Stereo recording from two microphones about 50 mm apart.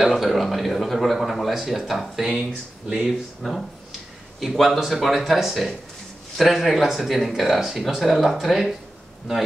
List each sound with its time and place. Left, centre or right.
0.0 s a man's voice: centre